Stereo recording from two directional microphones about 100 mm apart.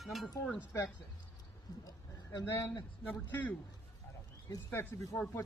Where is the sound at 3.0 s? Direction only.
10° left (ahead or behind).